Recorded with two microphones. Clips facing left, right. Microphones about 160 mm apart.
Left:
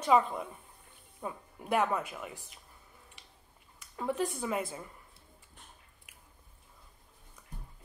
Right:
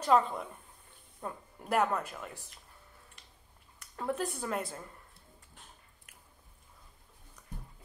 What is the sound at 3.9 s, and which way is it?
Speech, 5° left (ahead or behind).